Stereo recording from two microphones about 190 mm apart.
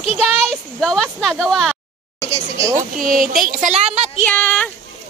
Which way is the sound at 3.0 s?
45° right (ahead or behind).